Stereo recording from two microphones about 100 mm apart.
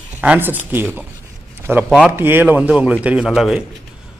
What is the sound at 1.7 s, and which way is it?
A man's voice, 10° right (ahead or behind).